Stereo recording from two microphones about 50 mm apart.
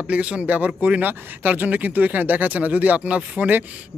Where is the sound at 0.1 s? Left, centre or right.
Right.